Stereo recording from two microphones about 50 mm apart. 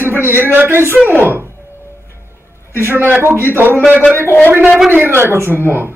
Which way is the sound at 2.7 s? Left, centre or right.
Right.